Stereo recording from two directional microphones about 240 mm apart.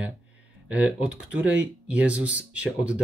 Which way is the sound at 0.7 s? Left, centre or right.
Centre.